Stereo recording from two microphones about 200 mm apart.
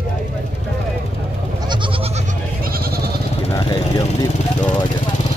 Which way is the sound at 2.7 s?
50° right (ahead or behind).